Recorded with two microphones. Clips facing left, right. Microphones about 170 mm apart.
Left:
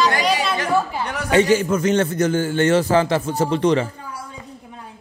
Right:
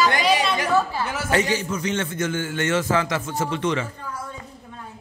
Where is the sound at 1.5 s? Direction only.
50° left (ahead or behind).